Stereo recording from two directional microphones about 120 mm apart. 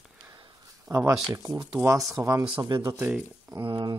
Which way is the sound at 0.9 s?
20° right (ahead or behind).